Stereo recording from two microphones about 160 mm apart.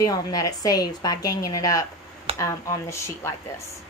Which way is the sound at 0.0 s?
25° left (ahead or behind).